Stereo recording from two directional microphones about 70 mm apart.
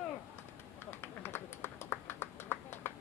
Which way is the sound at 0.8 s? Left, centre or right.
Left.